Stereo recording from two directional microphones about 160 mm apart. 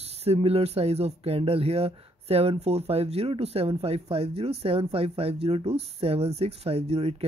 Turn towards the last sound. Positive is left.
turn(degrees=-40)  # may be behind; listen again after turning